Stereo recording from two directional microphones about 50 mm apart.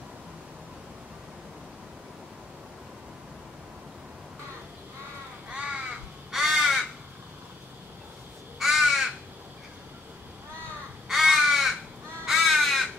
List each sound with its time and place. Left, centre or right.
5.5 s crow: right
6.3 s crow: centre
8.5 s crow: centre
11.1 s crow: centre